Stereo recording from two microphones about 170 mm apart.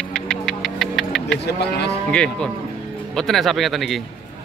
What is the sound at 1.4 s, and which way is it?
Cattle, 80° left.